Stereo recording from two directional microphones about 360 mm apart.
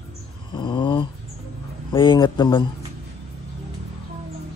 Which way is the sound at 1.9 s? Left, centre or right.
Centre.